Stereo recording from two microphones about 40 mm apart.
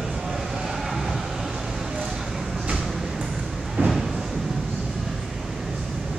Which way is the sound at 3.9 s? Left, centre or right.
Centre.